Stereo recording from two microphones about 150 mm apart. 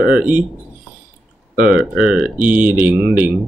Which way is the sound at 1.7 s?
5° right (ahead or behind).